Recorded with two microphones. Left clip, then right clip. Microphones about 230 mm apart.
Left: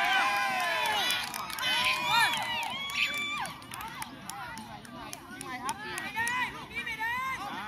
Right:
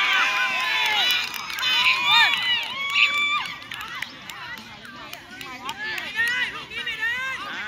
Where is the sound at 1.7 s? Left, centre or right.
Left.